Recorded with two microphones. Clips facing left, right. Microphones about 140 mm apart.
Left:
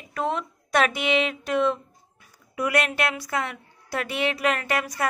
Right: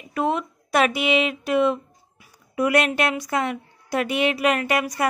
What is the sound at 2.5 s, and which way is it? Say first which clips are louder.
A woman's voice: right 4 dB; 25° right (ahead or behind).